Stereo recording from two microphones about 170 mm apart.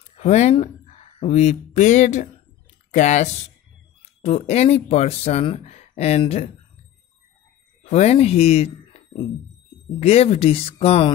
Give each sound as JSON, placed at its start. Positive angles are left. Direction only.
{"t": 0.2, "sound": "speech", "side_deg": 40}
{"t": 7.8, "sound": "speech", "side_deg": 40}